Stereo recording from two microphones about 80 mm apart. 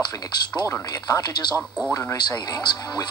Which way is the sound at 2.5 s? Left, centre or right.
Left.